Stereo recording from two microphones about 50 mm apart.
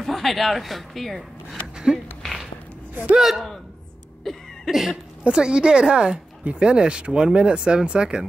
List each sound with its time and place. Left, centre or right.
0.0 s speech: centre
2.9 s a man's voice: right
3.2 s a man's voice: centre
4.2 s cough: centre
5.3 s speech: centre